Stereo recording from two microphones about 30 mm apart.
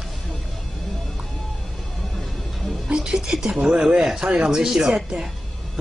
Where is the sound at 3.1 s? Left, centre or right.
Centre.